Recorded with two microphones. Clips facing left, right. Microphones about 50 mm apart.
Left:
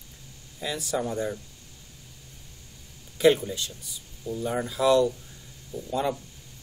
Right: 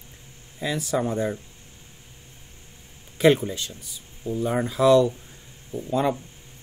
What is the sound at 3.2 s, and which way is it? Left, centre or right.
Speech, right.